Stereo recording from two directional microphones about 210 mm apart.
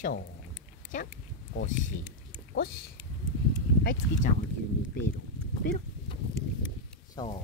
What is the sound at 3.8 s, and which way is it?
Speech, 45° left (ahead or behind).